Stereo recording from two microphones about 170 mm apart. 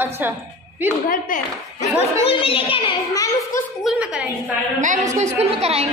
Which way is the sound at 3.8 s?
5° right (ahead or behind).